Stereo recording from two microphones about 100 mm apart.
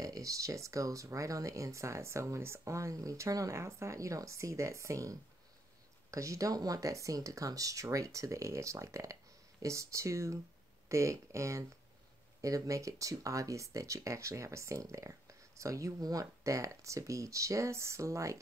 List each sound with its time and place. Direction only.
0.0 s speech: 35° right (ahead or behind)